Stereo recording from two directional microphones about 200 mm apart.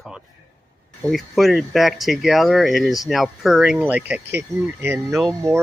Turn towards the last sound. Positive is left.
turn(degrees=0)  # may be behind; listen again after turning